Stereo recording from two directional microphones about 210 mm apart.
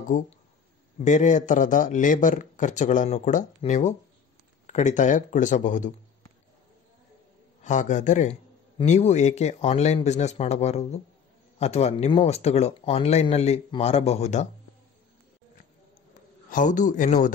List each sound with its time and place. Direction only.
0.1 s a man's voice: 40° left (ahead or behind)
7.6 s a man's voice: 35° left (ahead or behind)
16.4 s a man's voice: 40° left (ahead or behind)